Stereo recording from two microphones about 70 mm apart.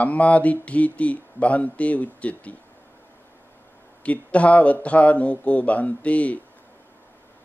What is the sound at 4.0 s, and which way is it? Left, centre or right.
Speech, centre.